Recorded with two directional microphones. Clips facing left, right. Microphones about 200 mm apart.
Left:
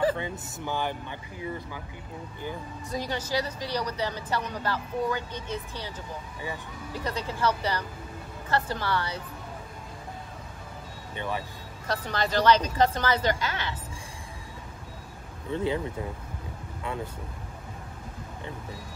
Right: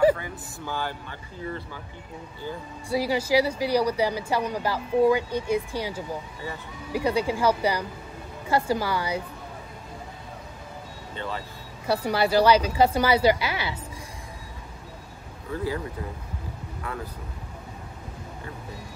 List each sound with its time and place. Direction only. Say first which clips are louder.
0.2 s speech: left 2 dB; 20° left (ahead or behind)
2.9 s a woman's voice: right 8 dB; 10° right (ahead or behind)
11.1 s speech: left 1 dB; 15° left (ahead or behind)
11.9 s a woman's voice: right 6 dB; 10° right (ahead or behind)
15.5 s speech: left 1 dB; 25° left (ahead or behind)
16.8 s speech: left 1 dB; 25° left (ahead or behind)